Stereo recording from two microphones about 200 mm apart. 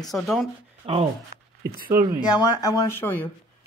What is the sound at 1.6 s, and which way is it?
Speech, 45° right (ahead or behind).